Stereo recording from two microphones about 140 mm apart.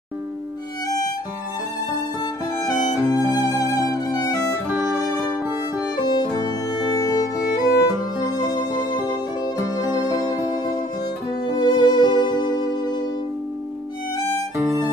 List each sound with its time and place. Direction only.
2.9 s violin: 25° left (ahead or behind)
4.7 s music: 15° right (ahead or behind)
5.9 s violin: 30° left (ahead or behind)
7.0 s music: 25° left (ahead or behind)
11.6 s music: 30° left (ahead or behind)